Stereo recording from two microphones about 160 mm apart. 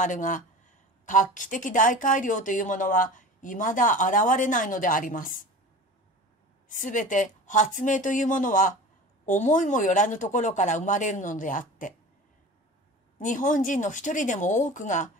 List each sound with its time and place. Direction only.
0.0 s speech: 50° left (ahead or behind)
6.7 s speech: 55° left (ahead or behind)
13.2 s speech: 55° left (ahead or behind)